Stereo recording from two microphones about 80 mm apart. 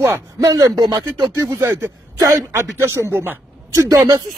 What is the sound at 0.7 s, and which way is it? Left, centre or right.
Speech, right.